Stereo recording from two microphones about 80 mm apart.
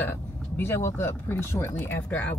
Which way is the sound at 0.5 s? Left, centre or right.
Left.